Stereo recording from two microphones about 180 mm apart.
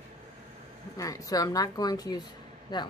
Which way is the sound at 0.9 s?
20° left (ahead or behind).